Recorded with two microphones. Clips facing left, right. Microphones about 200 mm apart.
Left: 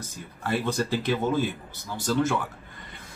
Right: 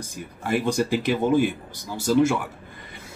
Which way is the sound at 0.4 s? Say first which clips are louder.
Right 4 dB; 15° right (ahead or behind).